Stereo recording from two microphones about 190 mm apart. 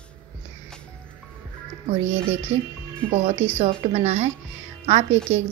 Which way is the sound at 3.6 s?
35° right (ahead or behind).